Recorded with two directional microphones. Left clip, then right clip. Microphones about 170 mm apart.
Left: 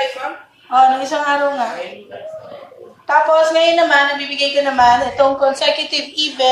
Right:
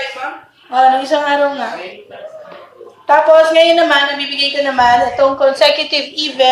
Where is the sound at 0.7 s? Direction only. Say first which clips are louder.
Right 2 dB; 55° right (ahead or behind).